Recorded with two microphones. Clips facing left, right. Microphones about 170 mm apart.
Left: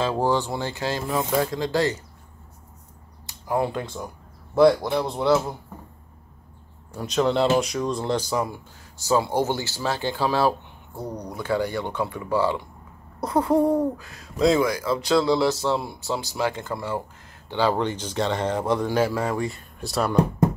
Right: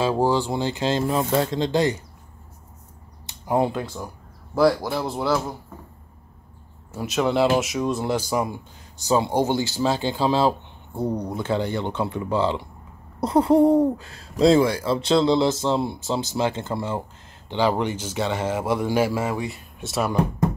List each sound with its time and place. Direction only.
0.0 s speech: 10° right (ahead or behind)
3.3 s a sound: 20° right (ahead or behind)
4.6 s a man's voice: centre (ahead or behind)
6.9 s speech: 5° right (ahead or behind)